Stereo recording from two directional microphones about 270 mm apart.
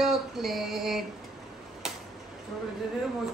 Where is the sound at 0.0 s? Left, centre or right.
Centre.